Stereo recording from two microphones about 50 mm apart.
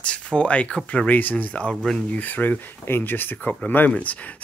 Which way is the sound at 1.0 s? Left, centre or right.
Left.